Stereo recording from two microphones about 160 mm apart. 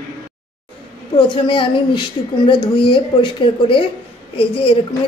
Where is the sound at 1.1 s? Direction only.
30° left (ahead or behind).